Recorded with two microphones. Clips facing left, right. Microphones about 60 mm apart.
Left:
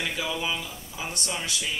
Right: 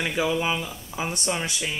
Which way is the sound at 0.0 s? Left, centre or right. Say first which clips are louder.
Right 5 dB; right.